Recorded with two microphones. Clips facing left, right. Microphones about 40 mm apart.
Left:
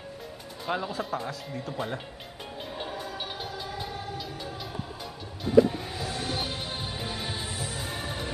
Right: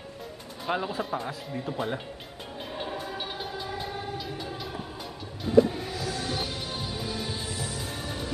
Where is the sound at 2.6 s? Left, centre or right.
Centre.